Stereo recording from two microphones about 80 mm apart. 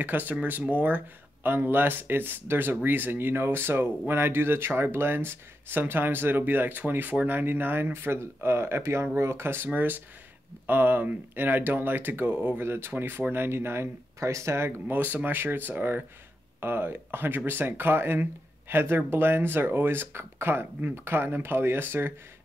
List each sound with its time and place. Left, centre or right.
0.0 s speech: right
14.9 s speech: right